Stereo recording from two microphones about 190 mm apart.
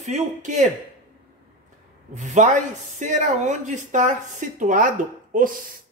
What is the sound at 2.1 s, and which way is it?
Speech, 40° right (ahead or behind).